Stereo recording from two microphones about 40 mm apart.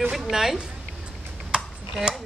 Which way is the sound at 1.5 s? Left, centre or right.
Centre.